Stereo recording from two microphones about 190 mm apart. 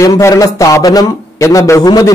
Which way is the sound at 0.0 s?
15° left (ahead or behind).